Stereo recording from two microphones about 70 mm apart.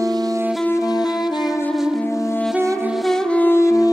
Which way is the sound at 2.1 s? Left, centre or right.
Left.